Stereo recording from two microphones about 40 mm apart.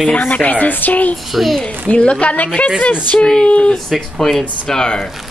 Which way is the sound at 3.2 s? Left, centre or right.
Centre.